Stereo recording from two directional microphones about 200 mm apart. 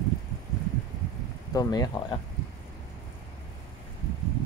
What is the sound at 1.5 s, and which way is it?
Speech, 20° left (ahead or behind).